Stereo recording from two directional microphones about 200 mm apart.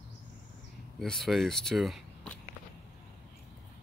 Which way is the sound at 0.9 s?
Centre (ahead or behind).